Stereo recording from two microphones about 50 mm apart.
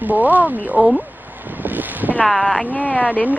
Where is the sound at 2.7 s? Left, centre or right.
Left.